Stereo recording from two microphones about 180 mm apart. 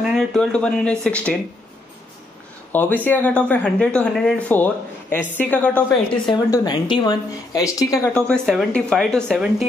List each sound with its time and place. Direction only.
0.0 s speech: centre (ahead or behind)
2.7 s speech: 10° left (ahead or behind)
6.2 s speech: 25° left (ahead or behind)
8.3 s speech: 5° left (ahead or behind)